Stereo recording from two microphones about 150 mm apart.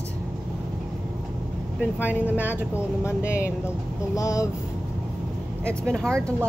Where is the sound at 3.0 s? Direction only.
20° left (ahead or behind).